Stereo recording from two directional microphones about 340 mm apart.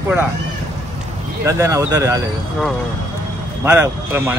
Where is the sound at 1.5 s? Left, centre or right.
Centre.